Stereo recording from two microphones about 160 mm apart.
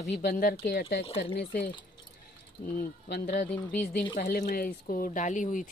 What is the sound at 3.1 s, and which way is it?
Speech, 70° left (ahead or behind).